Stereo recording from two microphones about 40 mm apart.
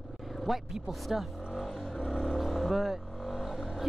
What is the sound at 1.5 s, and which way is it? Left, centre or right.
Vehicle, centre.